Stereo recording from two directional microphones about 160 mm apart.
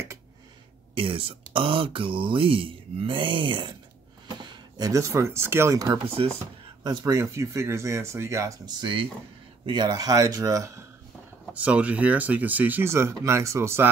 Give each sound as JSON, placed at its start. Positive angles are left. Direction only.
{"t": 0.9, "sound": "speech", "side_deg": -35}
{"t": 6.2, "sound": "speech", "side_deg": -30}
{"t": 11.5, "sound": "speech", "side_deg": -10}